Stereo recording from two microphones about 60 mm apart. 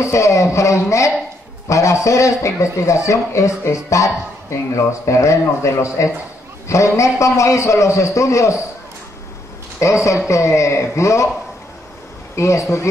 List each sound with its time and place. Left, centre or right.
0.0 s a man's voice: left
9.8 s speech: left
12.4 s speech: left